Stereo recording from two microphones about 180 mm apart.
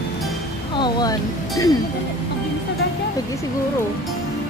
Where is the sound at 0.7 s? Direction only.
25° left (ahead or behind).